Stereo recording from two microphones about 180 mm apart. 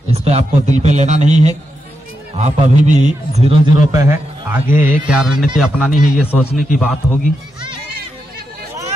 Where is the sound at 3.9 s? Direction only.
15° right (ahead or behind).